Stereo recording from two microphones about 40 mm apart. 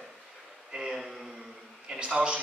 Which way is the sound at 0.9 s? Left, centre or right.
Centre.